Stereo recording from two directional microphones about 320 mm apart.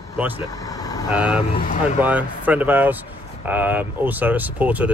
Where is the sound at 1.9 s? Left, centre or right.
Centre.